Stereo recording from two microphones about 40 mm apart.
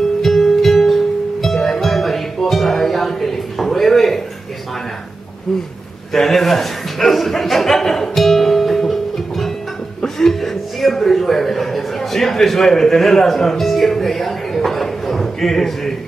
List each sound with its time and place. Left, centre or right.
0.2 s music: centre
6.1 s a man's voice: centre
10.0 s a man's voice: centre